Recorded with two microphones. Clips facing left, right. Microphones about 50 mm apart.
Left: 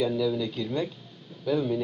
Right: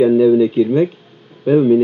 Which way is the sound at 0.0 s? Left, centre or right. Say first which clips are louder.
Right 15 dB; right.